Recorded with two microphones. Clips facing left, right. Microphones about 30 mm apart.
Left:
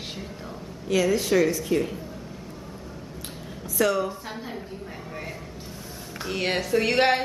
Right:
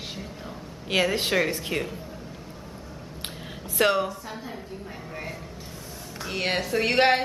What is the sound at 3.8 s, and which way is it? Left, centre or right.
Speech, right.